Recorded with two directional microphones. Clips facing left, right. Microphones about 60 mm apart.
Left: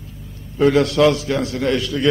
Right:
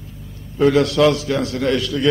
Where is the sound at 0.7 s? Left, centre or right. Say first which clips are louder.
Even; left.